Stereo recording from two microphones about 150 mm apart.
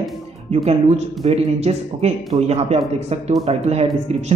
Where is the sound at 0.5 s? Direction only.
45° right (ahead or behind).